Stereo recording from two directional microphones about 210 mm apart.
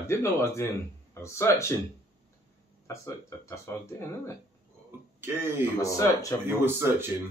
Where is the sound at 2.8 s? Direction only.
15° left (ahead or behind).